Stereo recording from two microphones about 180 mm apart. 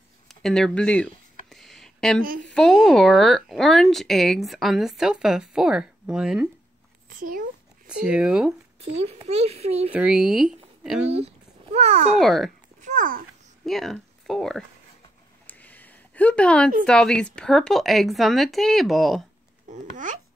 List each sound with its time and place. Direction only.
0.3 s speech: centre (ahead or behind)
1.5 s a sound: centre (ahead or behind)
2.5 s speech: 5° left (ahead or behind)
7.1 s a child's voice: 50° right (ahead or behind)
7.8 s speech: 5° right (ahead or behind)
9.0 s a child's voice: 35° right (ahead or behind)
9.9 s speech: 5° right (ahead or behind)
11.1 s speech: 35° right (ahead or behind)
12.2 s speech: centre (ahead or behind)
12.8 s babbling: 45° right (ahead or behind)
13.7 s speech: centre (ahead or behind)
15.4 s a sound: 10° left (ahead or behind)
16.8 s speech: 5° left (ahead or behind)
19.7 s a child's voice: 45° right (ahead or behind)